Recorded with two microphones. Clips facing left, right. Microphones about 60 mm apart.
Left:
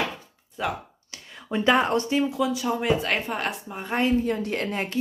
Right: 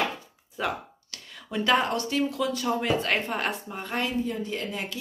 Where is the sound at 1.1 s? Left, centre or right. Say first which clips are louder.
Left 3 dB; left; by 3.8 s centre.